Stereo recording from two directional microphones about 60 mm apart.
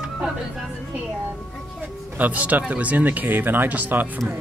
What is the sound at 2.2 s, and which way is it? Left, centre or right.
Speech, right.